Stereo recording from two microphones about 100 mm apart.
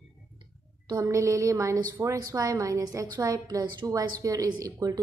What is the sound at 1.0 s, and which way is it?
A woman's voice, 30° right (ahead or behind).